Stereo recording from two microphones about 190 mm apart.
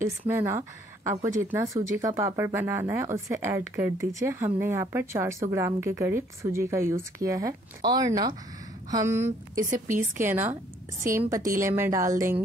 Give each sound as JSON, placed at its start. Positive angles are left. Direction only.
{"t": 0.3, "sound": "speech", "side_deg": -15}
{"t": 9.8, "sound": "a woman's voice", "side_deg": -45}
{"t": 10.2, "sound": "speech", "side_deg": -10}